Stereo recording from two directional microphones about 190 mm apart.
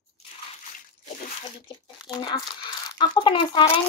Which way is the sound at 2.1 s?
25° left (ahead or behind).